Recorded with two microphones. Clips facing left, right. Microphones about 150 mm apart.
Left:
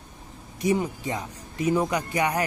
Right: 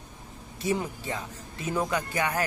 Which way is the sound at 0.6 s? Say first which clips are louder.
Left 5 dB; 15° left (ahead or behind).